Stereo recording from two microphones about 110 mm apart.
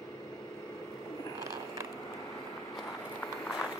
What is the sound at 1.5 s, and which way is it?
Vehicle, 25° right (ahead or behind).